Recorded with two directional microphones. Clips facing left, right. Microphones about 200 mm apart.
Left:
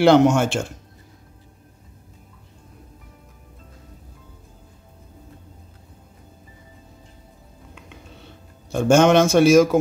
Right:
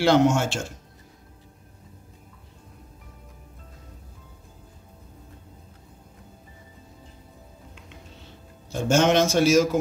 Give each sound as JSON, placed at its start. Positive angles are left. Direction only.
{"t": 0.0, "sound": "a man's voice", "side_deg": 55}
{"t": 8.6, "sound": "a man's voice", "side_deg": 55}